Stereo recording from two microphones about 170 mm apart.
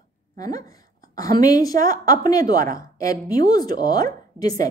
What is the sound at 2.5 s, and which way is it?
Speech, 55° right (ahead or behind).